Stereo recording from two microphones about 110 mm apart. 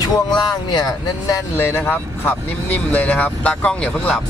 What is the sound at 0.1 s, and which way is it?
Speech, 40° left (ahead or behind).